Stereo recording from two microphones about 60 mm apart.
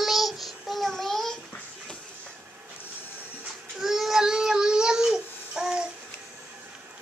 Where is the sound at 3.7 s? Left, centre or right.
Centre.